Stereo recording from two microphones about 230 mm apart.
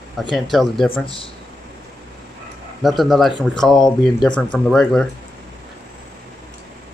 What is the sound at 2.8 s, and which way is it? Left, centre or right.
Speech, centre.